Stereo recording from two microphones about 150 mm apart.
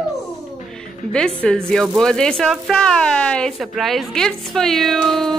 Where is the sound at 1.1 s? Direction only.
5° left (ahead or behind).